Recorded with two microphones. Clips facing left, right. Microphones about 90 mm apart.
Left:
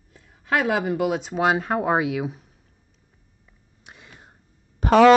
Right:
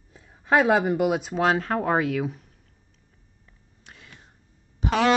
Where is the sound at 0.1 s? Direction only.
30° right (ahead or behind).